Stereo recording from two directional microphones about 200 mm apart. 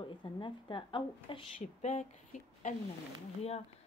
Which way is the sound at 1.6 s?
35° left (ahead or behind).